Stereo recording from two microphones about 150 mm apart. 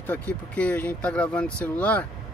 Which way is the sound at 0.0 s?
10° left (ahead or behind).